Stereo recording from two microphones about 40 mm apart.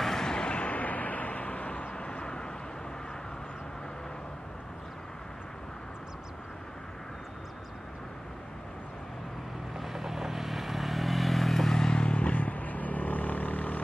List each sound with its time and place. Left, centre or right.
0.0 s vehicle: centre
9.8 s vehicle: centre
11.7 s vehicle: centre; by 13.7 s left